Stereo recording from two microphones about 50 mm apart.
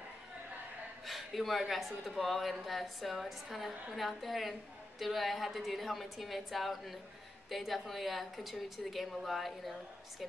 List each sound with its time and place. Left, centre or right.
1.0 s speech: centre